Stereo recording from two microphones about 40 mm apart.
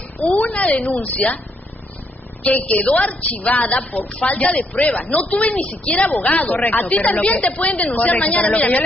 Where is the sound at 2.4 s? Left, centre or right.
Left.